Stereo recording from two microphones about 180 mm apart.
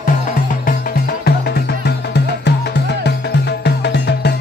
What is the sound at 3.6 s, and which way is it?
Music, 70° left (ahead or behind).